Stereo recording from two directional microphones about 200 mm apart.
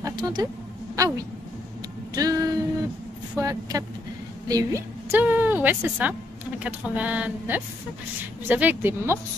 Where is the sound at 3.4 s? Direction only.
15° right (ahead or behind).